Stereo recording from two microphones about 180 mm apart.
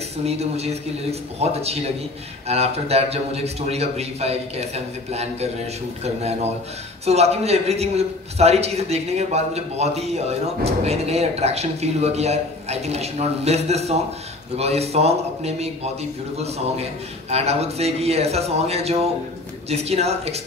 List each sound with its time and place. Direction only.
0.2 s a man's voice: 35° right (ahead or behind)